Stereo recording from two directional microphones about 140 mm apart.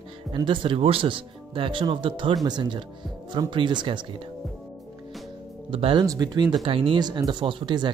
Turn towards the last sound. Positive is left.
turn(degrees=-35)  # may be behind; listen again after turning